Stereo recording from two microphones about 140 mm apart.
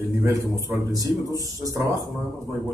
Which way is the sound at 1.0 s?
25° right (ahead or behind).